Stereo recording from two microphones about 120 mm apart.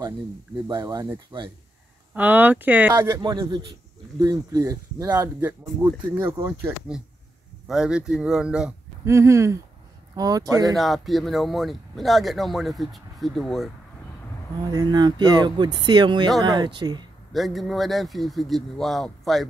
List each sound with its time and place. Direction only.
0.7 s speech: 35° right (ahead or behind)
2.1 s speech: 15° right (ahead or behind)
2.9 s speech: 30° right (ahead or behind)
5.1 s speech: 20° right (ahead or behind)
7.6 s speech: 5° right (ahead or behind)
9.0 s speech: 25° right (ahead or behind)
10.8 s speech: centre (ahead or behind)
14.7 s speech: 35° right (ahead or behind)
17.3 s speech: centre (ahead or behind)